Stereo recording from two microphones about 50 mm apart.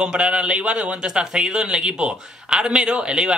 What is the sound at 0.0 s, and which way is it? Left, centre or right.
A man's voice, centre.